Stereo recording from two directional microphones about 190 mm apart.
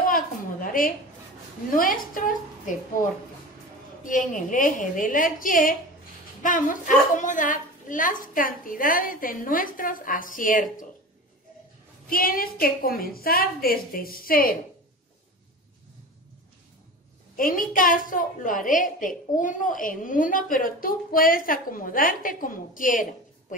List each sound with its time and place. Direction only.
0.1 s a sound: 45° left (ahead or behind)
1.8 s a woman's voice: 45° left (ahead or behind)
4.0 s a woman's voice: 45° left (ahead or behind)
12.1 s a woman's voice: 50° left (ahead or behind)
17.4 s a woman's voice: 45° left (ahead or behind)